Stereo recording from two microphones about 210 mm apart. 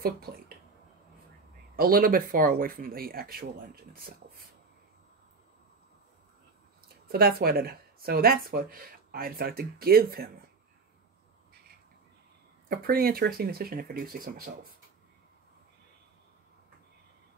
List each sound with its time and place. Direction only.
0.0 s speech: 45° right (ahead or behind)
1.8 s speech: 45° right (ahead or behind)
7.1 s speech: 45° right (ahead or behind)
12.6 s speech: 45° right (ahead or behind)